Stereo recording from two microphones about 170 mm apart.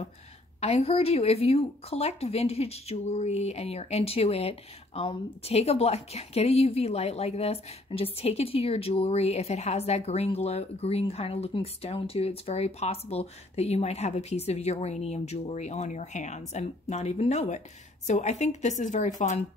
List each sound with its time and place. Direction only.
0.6 s a woman's voice: 35° left (ahead or behind)